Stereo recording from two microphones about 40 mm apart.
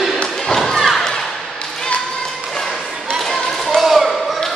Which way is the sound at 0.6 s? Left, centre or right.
Centre.